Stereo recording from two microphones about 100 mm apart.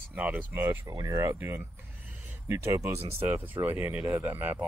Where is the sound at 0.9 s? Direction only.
35° right (ahead or behind).